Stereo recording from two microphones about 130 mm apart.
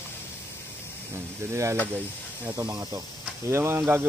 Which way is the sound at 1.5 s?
20° right (ahead or behind).